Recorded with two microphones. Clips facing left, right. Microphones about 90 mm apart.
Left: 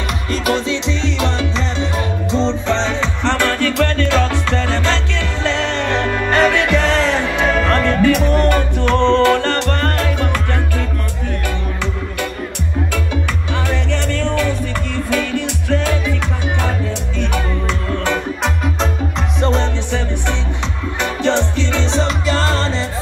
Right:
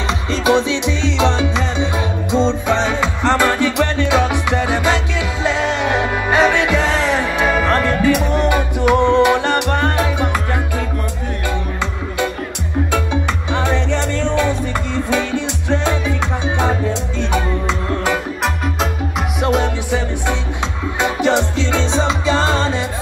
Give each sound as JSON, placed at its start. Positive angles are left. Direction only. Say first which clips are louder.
{"t": 0.3, "sound": "music", "louder": "right 3 dB", "side_deg": -20}
{"t": 12.9, "sound": "music", "louder": "right 3 dB", "side_deg": -20}
{"t": 18.4, "sound": "music", "louder": "even", "side_deg": -5}